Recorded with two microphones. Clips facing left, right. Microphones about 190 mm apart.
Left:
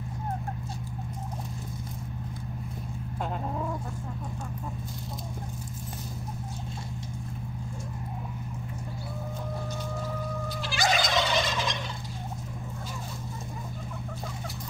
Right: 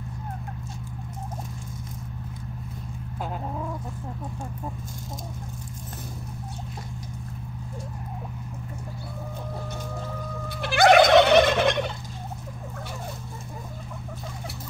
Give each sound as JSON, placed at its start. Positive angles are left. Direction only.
{"t": 10.6, "sound": "gobble", "side_deg": -60}